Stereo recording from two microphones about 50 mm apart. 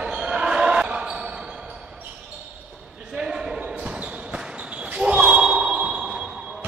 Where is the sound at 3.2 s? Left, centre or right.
Centre.